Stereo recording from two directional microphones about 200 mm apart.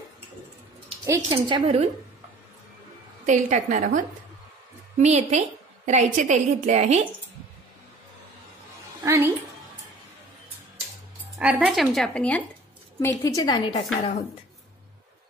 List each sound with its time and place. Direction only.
1.0 s a woman's voice: 20° right (ahead or behind)
3.3 s a woman's voice: 40° right (ahead or behind)
9.0 s a woman's voice: 15° right (ahead or behind)
11.3 s a woman's voice: 5° right (ahead or behind); by 13.8 s 25° left (ahead or behind)